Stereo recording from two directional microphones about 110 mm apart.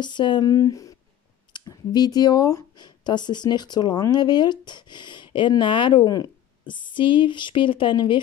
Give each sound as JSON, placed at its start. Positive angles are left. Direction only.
{"t": 0.0, "sound": "speech", "side_deg": 45}